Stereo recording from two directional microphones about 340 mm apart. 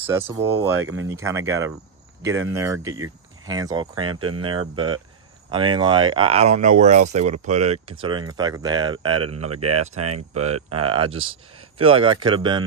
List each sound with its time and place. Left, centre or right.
0.0 s speech: centre
9.6 s speech: right
10.3 s speech: centre